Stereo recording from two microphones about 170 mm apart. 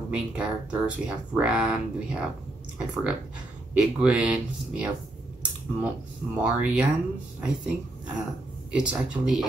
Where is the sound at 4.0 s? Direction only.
5° right (ahead or behind).